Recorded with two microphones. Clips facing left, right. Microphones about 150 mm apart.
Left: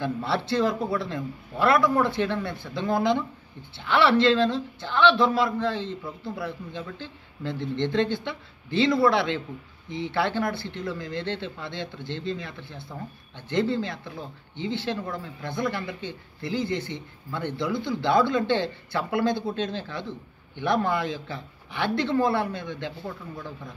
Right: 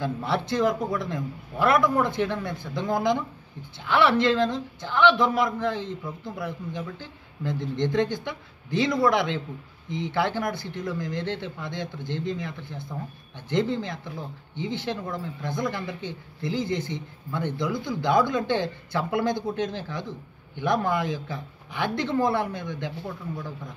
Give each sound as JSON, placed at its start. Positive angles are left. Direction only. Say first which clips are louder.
{"t": 0.2, "sound": "speech", "louder": "right 1 dB", "side_deg": -15}